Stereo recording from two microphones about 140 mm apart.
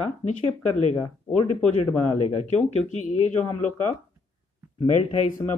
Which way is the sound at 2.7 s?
60° left (ahead or behind).